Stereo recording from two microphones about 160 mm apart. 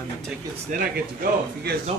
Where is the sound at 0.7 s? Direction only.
55° right (ahead or behind).